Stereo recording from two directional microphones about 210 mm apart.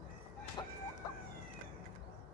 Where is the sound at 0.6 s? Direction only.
20° left (ahead or behind).